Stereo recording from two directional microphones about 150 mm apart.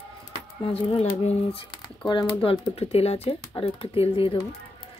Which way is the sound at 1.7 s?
30° left (ahead or behind).